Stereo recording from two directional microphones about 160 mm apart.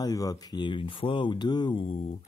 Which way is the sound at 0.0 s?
25° left (ahead or behind).